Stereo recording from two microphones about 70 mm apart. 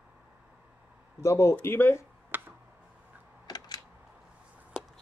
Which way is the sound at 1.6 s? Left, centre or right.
Left.